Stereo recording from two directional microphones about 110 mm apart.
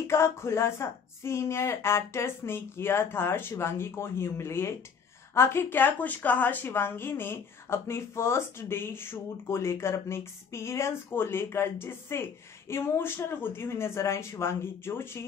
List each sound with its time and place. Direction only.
0.0 s speech: 25° left (ahead or behind)